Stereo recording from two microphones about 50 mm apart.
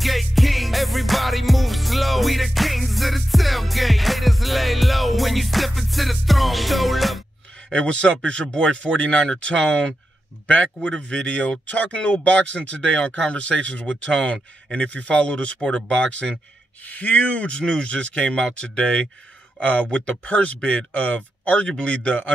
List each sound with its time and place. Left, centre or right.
0.0 s music: centre
7.7 s speech: left
16.8 s speech: left